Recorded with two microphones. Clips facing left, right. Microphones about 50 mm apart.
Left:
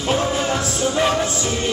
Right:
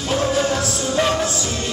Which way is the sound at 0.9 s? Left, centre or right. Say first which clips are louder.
Right 1 dB; centre.